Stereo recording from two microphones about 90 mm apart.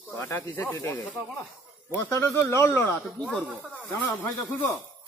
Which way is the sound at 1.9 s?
30° left (ahead or behind).